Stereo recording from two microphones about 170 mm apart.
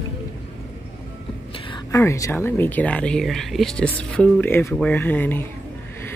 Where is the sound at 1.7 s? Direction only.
20° left (ahead or behind).